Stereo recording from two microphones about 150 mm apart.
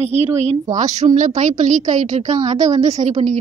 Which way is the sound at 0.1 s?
45° right (ahead or behind).